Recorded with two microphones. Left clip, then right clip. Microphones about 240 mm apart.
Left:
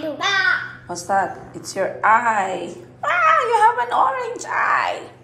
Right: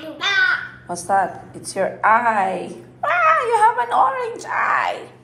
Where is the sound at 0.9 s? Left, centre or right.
Centre.